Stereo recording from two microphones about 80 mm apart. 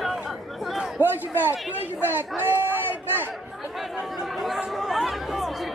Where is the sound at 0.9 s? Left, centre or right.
Right.